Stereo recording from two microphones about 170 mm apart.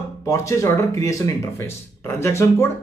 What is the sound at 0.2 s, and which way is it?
Speech, 20° left (ahead or behind).